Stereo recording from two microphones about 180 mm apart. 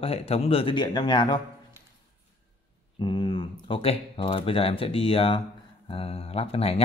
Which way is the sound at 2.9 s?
25° left (ahead or behind).